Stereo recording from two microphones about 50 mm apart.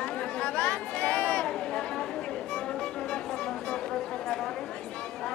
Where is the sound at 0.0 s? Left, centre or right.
Centre.